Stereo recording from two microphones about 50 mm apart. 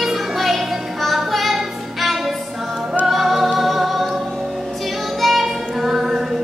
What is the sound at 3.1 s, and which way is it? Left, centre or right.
Music, centre.